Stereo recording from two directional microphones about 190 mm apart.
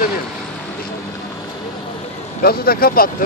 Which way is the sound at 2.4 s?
50° left (ahead or behind).